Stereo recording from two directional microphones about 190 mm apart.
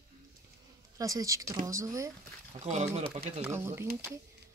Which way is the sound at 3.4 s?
15° right (ahead or behind).